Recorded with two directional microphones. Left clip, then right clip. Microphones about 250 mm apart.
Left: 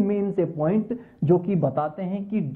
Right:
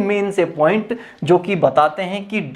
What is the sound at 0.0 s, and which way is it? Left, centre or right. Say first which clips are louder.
Speech: right 7 dB; centre.